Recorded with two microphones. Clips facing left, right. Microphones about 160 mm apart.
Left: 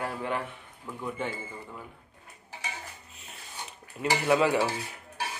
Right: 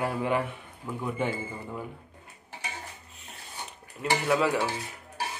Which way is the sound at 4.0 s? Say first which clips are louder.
Left 1 dB; centre (ahead or behind).